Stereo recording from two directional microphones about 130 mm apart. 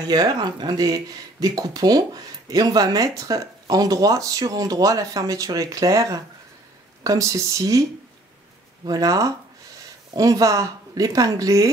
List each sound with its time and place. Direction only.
0.1 s speech: 30° right (ahead or behind)
8.8 s speech: 30° right (ahead or behind)